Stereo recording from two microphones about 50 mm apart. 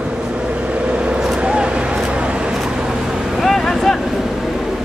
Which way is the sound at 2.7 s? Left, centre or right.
Centre.